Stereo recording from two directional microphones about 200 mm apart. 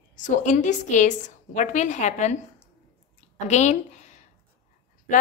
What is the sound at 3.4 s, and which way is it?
Speech, 35° left (ahead or behind).